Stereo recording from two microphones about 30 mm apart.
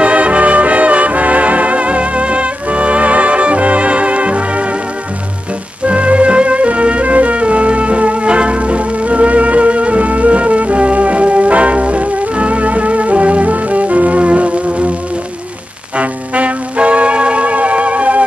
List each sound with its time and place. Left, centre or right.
0.0 s music: right
5.9 s music: right
16.0 s music: right